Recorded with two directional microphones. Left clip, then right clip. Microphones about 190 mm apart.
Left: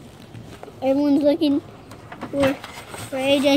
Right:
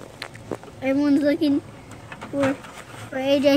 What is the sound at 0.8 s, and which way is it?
Speech, centre (ahead or behind).